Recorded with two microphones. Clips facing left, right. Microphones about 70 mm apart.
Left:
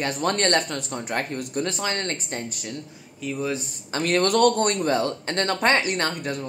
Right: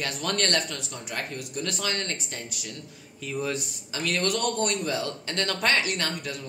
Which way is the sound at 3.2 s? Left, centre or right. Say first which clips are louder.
Left 3 dB; centre.